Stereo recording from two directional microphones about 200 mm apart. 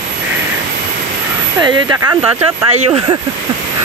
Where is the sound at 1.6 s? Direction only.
20° right (ahead or behind).